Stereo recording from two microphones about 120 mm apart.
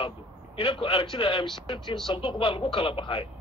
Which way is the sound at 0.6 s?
50° left (ahead or behind).